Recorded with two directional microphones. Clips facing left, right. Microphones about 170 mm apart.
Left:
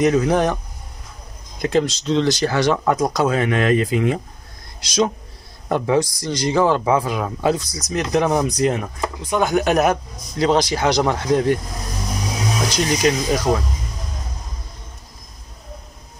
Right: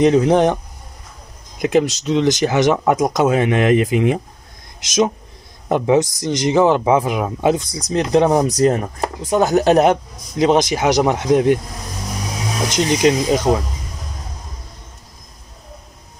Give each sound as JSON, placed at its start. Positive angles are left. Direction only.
{"t": 0.0, "sound": "speech", "side_deg": -25}
{"t": 1.6, "sound": "speech", "side_deg": -15}
{"t": 5.7, "sound": "speech", "side_deg": -20}
{"t": 12.6, "sound": "speech", "side_deg": -20}